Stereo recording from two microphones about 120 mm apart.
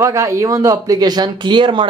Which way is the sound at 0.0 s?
25° right (ahead or behind).